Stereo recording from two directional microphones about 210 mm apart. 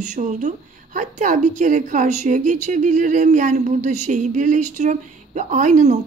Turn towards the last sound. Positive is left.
turn(degrees=-35)  # may be behind; listen again after turning